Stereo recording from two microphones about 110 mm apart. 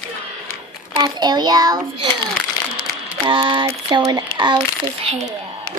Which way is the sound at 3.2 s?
50° right (ahead or behind).